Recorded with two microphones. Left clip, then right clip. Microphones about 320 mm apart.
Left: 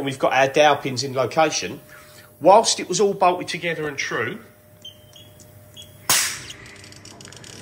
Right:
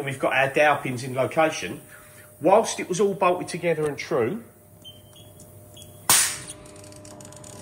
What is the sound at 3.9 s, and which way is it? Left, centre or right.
Speech, centre.